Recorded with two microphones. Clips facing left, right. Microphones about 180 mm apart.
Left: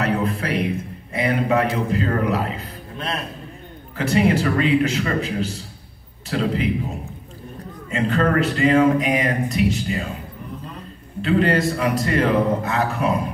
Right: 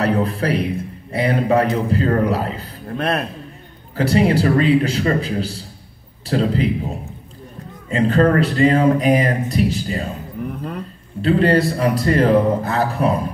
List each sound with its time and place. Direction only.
0.0 s a man's voice: 35° right (ahead or behind)
3.0 s a man's voice: 60° right (ahead or behind)
3.9 s speech: 35° right (ahead or behind)
7.9 s speech: 35° right (ahead or behind)
10.4 s a sound: 65° right (ahead or behind)
11.1 s speech: 35° right (ahead or behind)